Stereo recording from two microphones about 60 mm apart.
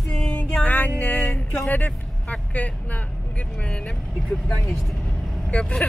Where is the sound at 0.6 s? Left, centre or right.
Left.